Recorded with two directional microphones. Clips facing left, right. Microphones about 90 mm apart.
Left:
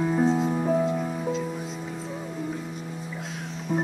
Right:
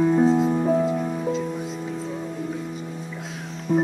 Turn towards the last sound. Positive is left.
turn(degrees=0)  # may be behind; listen again after turning